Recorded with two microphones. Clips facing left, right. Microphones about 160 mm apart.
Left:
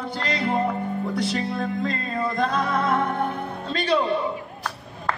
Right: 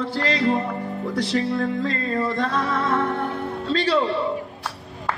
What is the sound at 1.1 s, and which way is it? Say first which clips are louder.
Music: right 6 dB; 20° left (ahead or behind).